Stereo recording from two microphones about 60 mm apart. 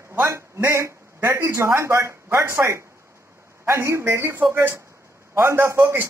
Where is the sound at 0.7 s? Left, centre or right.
Right.